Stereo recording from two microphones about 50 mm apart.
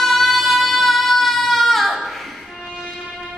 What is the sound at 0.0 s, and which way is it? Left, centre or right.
Singing, centre.